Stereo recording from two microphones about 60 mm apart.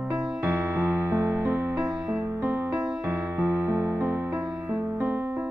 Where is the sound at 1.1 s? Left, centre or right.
Right.